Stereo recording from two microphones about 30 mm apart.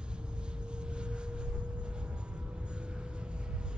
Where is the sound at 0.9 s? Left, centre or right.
Right.